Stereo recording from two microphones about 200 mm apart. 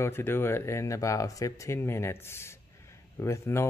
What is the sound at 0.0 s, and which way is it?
Speech, 10° left (ahead or behind).